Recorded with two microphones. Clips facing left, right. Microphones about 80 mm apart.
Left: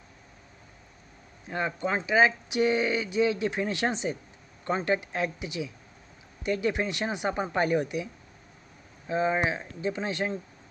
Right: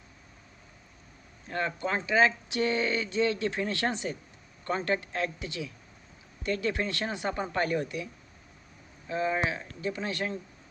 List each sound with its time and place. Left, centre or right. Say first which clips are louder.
1.5 s speech: left 2 dB; centre